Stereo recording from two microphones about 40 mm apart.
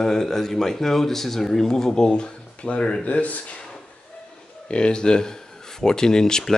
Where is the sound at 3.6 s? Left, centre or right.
Centre.